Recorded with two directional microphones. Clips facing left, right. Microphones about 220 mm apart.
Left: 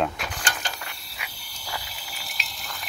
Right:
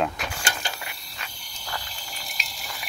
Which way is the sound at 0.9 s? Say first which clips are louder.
Even; 5° left (ahead or behind).